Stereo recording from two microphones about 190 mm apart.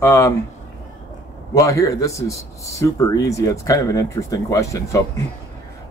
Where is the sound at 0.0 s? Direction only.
15° left (ahead or behind).